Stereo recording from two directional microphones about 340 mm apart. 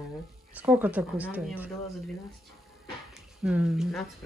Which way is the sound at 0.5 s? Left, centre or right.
Centre.